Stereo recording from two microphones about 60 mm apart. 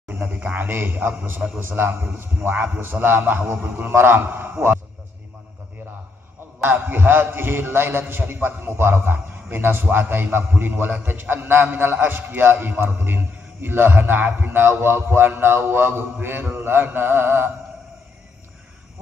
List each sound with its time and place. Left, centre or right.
0.4 s a man's voice: right
0.7 s a man's voice: right
6.6 s a man's voice: right